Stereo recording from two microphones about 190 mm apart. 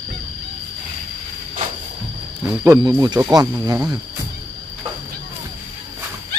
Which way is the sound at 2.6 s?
15° right (ahead or behind).